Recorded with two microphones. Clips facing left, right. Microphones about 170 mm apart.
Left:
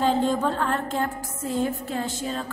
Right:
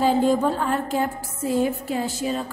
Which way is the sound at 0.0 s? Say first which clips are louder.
Right 3 dB; 10° right (ahead or behind).